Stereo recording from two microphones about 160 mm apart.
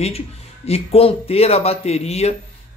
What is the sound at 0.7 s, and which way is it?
A man's voice, 40° left (ahead or behind).